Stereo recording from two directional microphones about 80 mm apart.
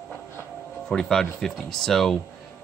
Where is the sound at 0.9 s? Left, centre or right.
Centre.